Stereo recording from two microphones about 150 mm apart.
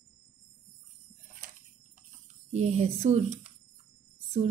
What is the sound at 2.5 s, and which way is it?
Speech, 45° right (ahead or behind).